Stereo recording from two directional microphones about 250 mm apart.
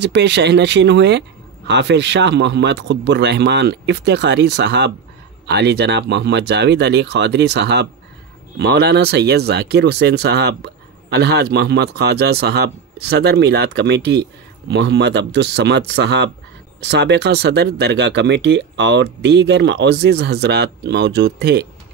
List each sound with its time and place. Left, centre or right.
0.0 s speech: right